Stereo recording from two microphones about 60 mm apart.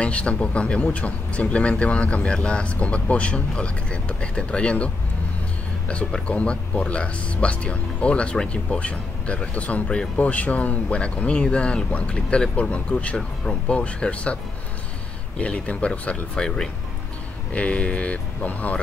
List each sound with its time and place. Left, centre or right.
0.0 s speech: centre
6.2 s speech: centre